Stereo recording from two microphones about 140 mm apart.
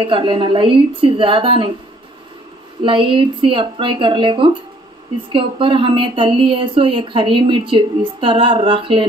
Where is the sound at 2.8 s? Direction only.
40° right (ahead or behind).